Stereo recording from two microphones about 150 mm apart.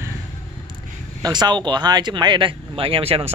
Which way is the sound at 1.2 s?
30° right (ahead or behind).